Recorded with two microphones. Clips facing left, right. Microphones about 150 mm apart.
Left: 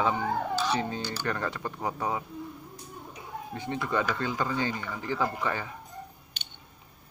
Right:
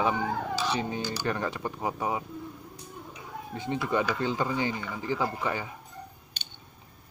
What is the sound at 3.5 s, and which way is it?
Speech, 20° right (ahead or behind).